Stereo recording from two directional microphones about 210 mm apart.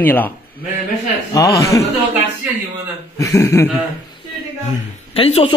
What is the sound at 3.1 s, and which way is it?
Speech, 10° left (ahead or behind).